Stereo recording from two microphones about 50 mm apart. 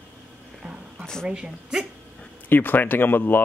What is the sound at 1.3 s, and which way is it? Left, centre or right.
Speech, centre.